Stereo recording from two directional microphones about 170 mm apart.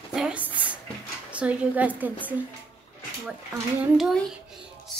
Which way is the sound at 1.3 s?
10° right (ahead or behind).